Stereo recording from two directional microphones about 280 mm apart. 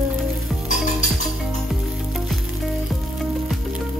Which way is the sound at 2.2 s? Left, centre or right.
Centre.